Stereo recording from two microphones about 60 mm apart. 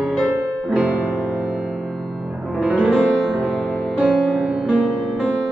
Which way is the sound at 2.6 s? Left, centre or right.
Centre.